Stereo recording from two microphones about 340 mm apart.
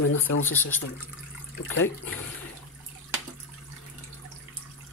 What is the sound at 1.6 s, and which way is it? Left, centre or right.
Speech, left.